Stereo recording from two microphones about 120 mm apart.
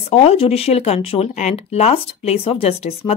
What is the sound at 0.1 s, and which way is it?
Speech, 60° left (ahead or behind).